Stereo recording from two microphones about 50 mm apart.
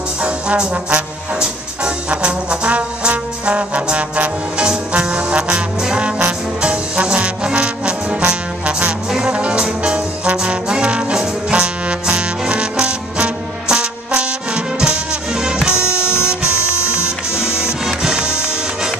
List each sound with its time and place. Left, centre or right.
0.2 s trombone: right
2.0 s trombone: right
9.3 s music: centre